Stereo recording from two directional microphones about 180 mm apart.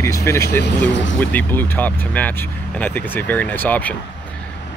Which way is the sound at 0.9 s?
90° left.